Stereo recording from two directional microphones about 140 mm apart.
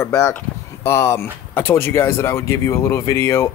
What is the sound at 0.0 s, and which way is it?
Speech, 20° left (ahead or behind).